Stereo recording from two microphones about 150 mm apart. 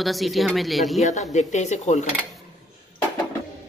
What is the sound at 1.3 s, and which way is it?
Speech, 50° left (ahead or behind).